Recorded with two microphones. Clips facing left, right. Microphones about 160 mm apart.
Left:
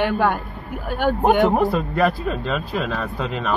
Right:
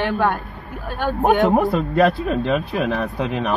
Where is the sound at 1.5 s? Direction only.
20° right (ahead or behind).